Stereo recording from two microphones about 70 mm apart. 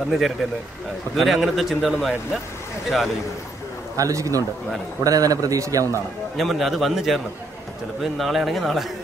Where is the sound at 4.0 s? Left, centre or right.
Right.